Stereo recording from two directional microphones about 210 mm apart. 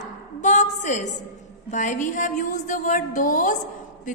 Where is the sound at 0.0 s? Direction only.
35° left (ahead or behind).